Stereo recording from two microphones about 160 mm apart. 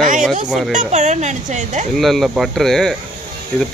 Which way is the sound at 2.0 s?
Centre (ahead or behind).